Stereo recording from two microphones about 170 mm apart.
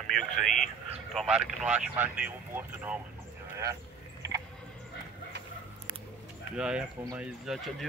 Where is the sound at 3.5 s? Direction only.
20° right (ahead or behind).